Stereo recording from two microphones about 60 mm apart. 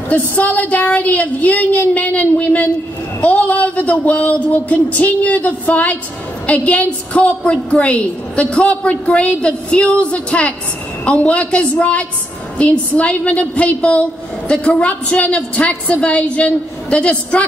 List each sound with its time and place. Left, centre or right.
0.1 s a woman's voice: left